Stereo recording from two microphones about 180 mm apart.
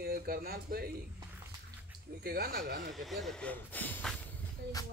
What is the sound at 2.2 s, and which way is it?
Speech, 60° right (ahead or behind).